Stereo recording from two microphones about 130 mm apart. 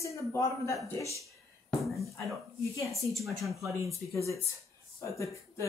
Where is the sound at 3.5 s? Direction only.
25° right (ahead or behind).